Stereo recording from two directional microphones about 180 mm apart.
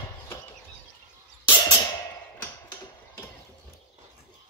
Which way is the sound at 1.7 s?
20° left (ahead or behind).